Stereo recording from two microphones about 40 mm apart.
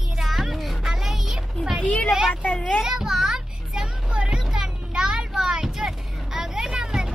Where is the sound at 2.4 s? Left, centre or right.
Left.